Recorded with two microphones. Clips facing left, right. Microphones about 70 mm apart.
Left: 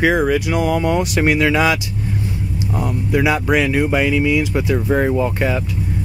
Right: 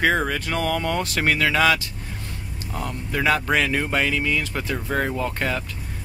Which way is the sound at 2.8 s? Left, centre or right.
Centre.